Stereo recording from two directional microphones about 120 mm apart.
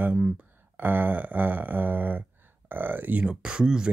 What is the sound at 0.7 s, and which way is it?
Speech, 15° right (ahead or behind).